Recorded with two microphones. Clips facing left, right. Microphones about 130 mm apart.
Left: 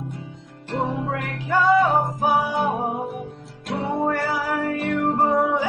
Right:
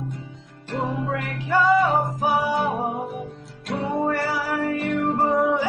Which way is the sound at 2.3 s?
15° left (ahead or behind).